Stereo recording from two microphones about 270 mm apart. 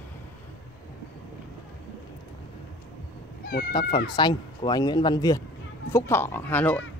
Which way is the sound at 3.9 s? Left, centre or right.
Centre.